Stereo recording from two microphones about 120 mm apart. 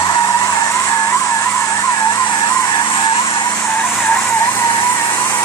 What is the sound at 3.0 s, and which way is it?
Vehicle, 45° left (ahead or behind).